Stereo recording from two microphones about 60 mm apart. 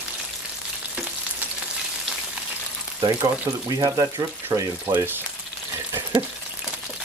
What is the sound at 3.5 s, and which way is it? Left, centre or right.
Speech, right.